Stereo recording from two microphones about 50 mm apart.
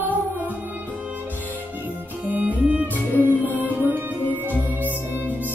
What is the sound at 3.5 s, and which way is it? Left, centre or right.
Music, right.